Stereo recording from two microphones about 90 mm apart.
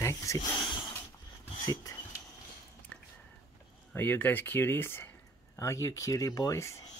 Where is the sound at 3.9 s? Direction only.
20° left (ahead or behind).